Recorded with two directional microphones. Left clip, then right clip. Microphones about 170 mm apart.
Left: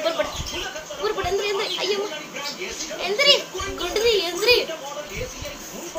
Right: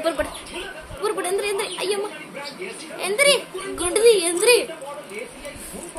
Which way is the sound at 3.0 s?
65° right (ahead or behind).